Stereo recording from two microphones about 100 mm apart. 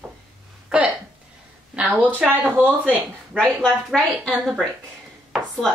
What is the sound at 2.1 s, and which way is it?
Speech, 20° right (ahead or behind).